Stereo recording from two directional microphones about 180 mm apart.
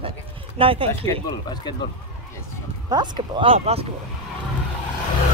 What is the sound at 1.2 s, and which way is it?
Speech, 25° left (ahead or behind).